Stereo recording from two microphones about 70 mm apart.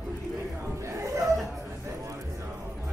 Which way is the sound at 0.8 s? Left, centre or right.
Right.